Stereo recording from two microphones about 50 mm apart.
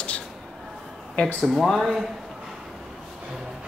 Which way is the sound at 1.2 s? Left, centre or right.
Left.